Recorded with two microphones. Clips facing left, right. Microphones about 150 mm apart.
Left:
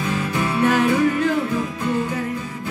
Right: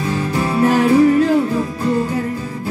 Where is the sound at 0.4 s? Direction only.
30° right (ahead or behind).